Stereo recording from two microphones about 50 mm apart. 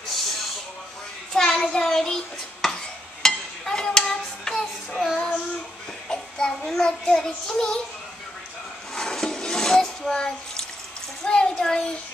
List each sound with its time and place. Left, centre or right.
1.3 s a sound: centre
4.9 s child singing: centre
6.0 s child singing: centre
6.6 s a child's voice: centre
7.1 s child singing: centre
8.9 s a sound: centre
11.2 s speech: centre